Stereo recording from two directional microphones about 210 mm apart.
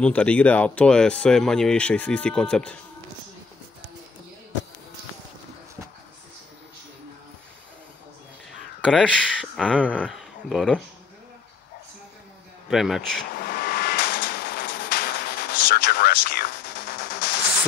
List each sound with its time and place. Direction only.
0.0 s speech: 5° left (ahead or behind)
8.8 s speech: centre (ahead or behind)
12.6 s speech: centre (ahead or behind)
13.4 s a sound: 45° left (ahead or behind)